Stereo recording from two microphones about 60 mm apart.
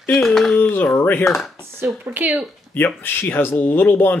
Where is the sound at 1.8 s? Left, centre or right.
Right.